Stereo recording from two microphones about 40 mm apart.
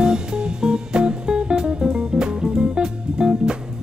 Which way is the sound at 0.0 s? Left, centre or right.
Centre.